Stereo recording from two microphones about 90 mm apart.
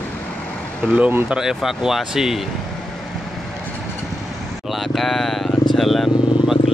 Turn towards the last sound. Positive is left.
turn(degrees=0)  # may be behind; listen again after turning